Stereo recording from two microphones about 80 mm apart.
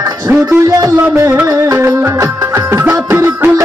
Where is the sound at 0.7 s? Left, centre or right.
Right.